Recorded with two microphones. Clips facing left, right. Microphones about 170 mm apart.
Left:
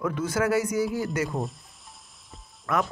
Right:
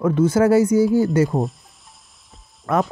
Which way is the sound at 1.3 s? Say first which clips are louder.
Right 8 dB; 40° right (ahead or behind).